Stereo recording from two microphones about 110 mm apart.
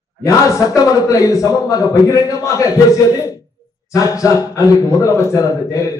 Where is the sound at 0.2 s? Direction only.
30° left (ahead or behind).